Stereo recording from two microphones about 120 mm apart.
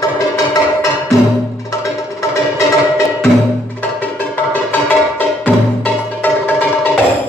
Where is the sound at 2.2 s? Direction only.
25° left (ahead or behind).